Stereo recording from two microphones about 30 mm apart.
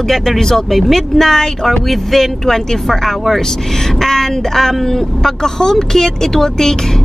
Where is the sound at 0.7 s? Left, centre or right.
Centre.